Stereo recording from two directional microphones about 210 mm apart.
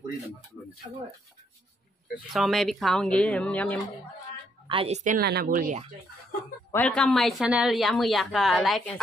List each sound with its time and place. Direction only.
2.3 s a woman's voice: centre (ahead or behind)
4.6 s a woman's voice: 30° right (ahead or behind)
6.7 s a woman's voice: 5° left (ahead or behind)